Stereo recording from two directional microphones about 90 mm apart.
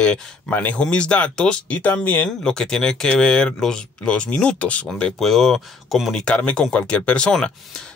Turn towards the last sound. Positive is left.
turn(degrees=10)  # may be behind; listen again after turning